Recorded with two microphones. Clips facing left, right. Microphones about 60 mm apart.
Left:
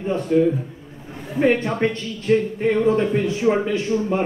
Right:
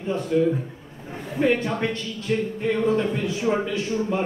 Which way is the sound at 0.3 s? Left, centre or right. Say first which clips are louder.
Left 3 dB; left.